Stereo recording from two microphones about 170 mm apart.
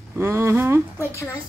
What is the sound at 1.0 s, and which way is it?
Speech, 15° left (ahead or behind).